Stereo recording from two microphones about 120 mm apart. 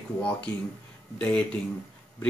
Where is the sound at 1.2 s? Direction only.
10° left (ahead or behind).